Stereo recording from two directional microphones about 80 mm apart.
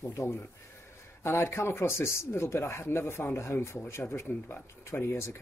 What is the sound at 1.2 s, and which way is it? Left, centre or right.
Speech, left.